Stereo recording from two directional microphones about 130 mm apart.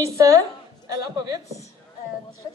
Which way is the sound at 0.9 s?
30° right (ahead or behind).